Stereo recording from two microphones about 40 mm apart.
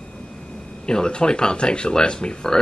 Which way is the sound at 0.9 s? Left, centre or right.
Centre.